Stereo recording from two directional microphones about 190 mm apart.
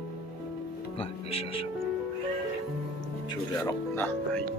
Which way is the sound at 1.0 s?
30° left (ahead or behind).